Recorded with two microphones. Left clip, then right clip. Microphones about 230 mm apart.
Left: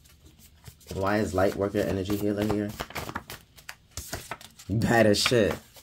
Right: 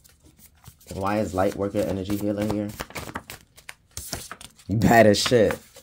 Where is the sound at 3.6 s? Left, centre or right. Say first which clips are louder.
Right 3 dB; centre.